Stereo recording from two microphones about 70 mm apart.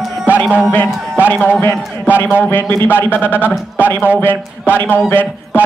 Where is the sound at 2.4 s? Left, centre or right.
Left.